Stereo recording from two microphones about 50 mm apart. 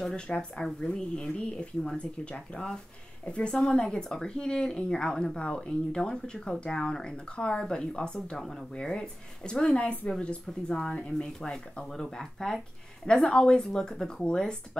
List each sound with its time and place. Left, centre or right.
0.1 s a woman's voice: centre
8.4 s a woman's voice: centre